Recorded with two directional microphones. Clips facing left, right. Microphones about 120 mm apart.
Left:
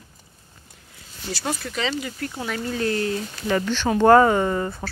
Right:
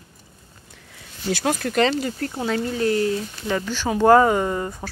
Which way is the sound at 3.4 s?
5° right (ahead or behind).